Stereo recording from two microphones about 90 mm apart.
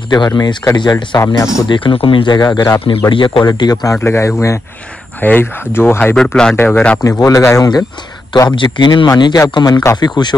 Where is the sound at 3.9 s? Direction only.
30° left (ahead or behind).